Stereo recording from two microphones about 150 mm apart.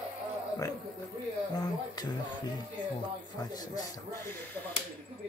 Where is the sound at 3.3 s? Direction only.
25° left (ahead or behind).